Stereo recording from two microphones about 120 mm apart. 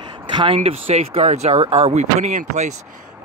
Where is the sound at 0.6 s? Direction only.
60° right (ahead or behind); by 2.7 s 75° right (ahead or behind).